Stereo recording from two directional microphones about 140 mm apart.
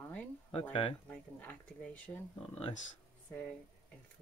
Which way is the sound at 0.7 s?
40° left (ahead or behind).